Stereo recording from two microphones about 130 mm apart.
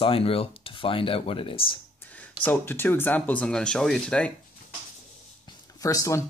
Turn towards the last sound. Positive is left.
turn(degrees=25)  # may be behind; listen again after turning